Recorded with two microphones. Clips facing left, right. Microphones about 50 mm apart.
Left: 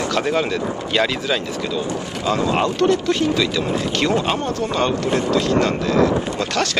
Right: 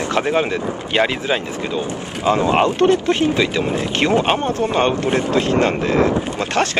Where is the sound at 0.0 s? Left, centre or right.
Right.